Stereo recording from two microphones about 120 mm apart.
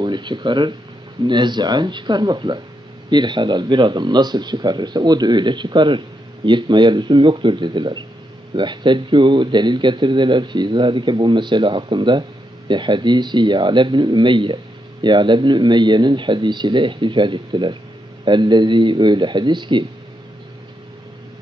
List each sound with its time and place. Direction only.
0.0 s speech: 40° right (ahead or behind)